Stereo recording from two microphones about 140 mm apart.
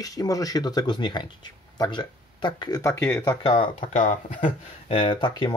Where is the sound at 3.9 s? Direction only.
65° left (ahead or behind).